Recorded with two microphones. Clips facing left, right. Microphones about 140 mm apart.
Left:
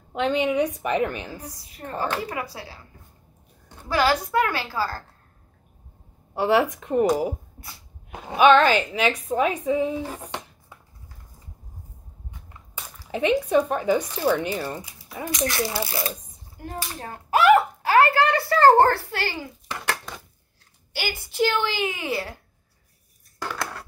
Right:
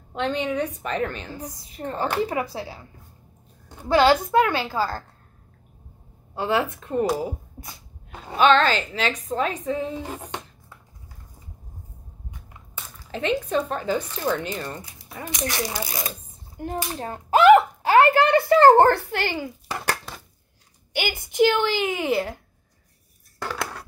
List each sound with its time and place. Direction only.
0.1 s a woman's voice: 10° left (ahead or behind)
1.4 s a woman's voice: 25° right (ahead or behind)
3.9 s a woman's voice: 25° right (ahead or behind)
6.3 s a woman's voice: 15° left (ahead or behind)
8.1 s a woman's voice: 15° left (ahead or behind)
12.7 s a woman's voice: 10° left (ahead or behind)
15.2 s a woman's voice: 20° right (ahead or behind)
19.7 s dishes: 40° right (ahead or behind)
20.9 s a woman's voice: 20° right (ahead or behind)